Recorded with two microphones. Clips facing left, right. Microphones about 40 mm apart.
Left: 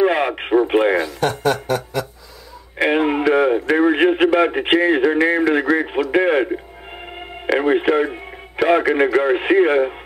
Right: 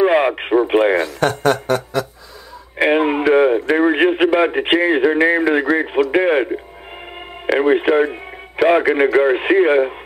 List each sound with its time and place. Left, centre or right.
0.0 s radio: centre
1.4 s a sound: right
2.8 s a man's voice: centre